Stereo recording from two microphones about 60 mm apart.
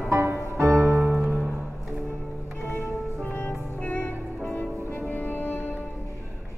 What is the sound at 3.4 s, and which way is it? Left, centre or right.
Music, left.